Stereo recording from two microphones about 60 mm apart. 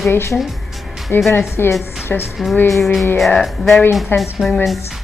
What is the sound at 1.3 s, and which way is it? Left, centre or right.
Speech, left.